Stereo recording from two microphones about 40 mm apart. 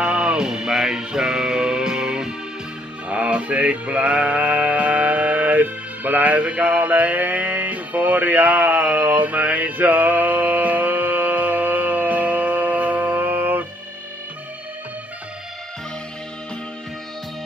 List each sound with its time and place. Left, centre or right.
0.0 s music: right
0.5 s music: centre
3.1 s music: right
13.2 s music: right